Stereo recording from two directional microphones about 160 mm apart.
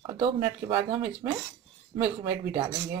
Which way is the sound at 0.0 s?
30° right (ahead or behind).